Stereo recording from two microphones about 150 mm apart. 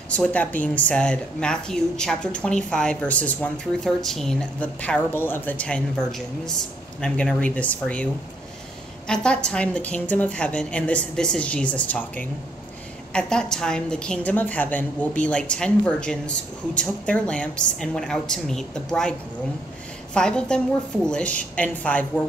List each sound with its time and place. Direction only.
0.1 s a woman's voice: 10° left (ahead or behind)
20.2 s a woman's voice: 5° left (ahead or behind)